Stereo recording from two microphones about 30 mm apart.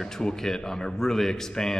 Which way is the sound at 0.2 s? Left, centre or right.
Left.